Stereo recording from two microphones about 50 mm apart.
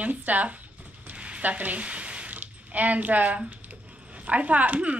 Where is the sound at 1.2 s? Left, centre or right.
Right.